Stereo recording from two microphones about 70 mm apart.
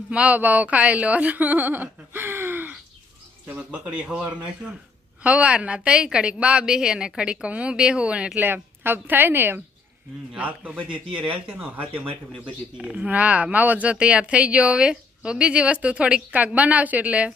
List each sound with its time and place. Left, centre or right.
0.1 s speech: centre
5.2 s a woman's voice: centre
8.8 s a woman's voice: right